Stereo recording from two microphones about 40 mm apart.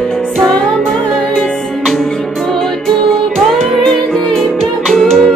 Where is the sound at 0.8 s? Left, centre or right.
Centre.